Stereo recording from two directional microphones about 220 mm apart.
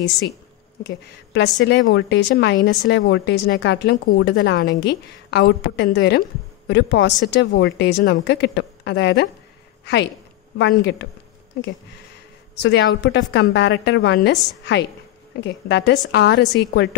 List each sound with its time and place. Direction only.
0.8 s a woman's voice: 50° left (ahead or behind)
10.6 s a woman's voice: 50° left (ahead or behind)
12.5 s a woman's voice: 50° left (ahead or behind)